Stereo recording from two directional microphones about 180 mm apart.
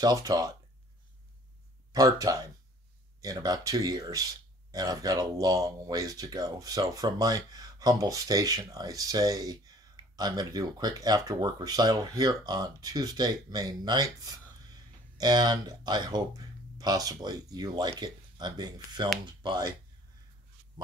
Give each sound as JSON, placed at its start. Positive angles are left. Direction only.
{"t": 0.0, "sound": "speech", "side_deg": -20}
{"t": 1.9, "sound": "speech", "side_deg": -20}
{"t": 20.8, "sound": "speech", "side_deg": -20}